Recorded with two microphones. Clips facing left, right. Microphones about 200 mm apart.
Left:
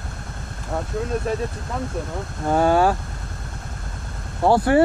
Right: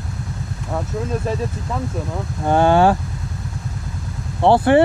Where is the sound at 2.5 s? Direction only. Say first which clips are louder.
Right 3 dB; 30° right (ahead or behind).